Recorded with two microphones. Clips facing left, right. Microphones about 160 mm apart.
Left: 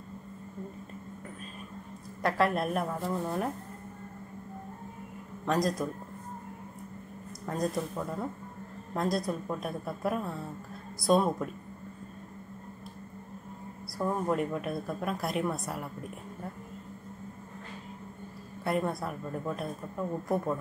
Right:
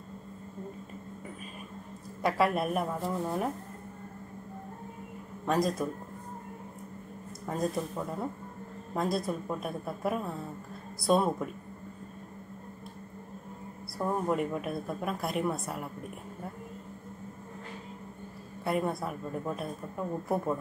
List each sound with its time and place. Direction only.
2.2 s a woman's voice: 5° right (ahead or behind)
5.4 s a man's voice: centre (ahead or behind)
7.4 s a woman's voice: 5° right (ahead or behind)
13.9 s a woman's voice: centre (ahead or behind)
18.6 s a woman's voice: 5° right (ahead or behind)